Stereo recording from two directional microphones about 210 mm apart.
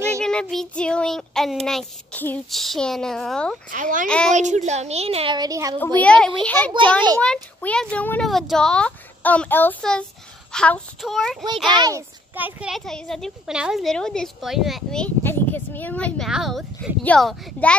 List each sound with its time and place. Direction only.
0.2 s speech: 5° left (ahead or behind)
3.7 s speech: 40° right (ahead or behind); by 5.8 s 15° right (ahead or behind)
5.9 s a child's voice: 5° left (ahead or behind)
11.7 s speech: 20° right (ahead or behind)
12.4 s speech: 5° right (ahead or behind)